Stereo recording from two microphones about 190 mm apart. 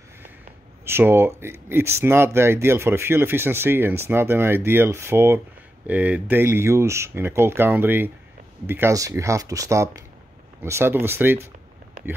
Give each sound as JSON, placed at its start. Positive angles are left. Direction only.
{"t": 0.8, "sound": "speech", "side_deg": -10}